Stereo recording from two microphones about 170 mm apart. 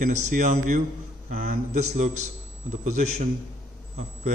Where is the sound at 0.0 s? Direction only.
45° right (ahead or behind).